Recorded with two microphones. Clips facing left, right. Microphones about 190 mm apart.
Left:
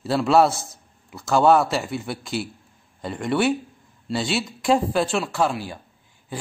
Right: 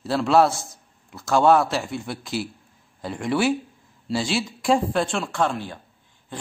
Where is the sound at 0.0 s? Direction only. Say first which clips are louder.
Left 1 dB; centre (ahead or behind).